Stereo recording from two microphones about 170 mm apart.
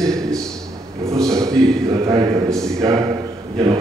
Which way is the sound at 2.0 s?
20° right (ahead or behind).